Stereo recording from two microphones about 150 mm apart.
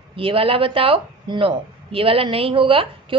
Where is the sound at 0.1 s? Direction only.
35° right (ahead or behind).